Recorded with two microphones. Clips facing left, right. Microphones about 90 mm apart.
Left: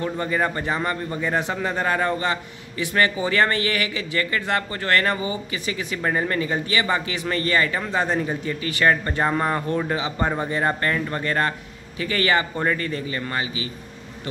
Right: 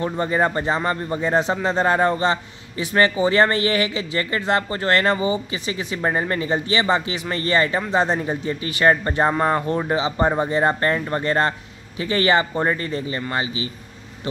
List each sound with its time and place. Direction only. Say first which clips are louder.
0.0 s a man's voice: right 3 dB; 25° right (ahead or behind)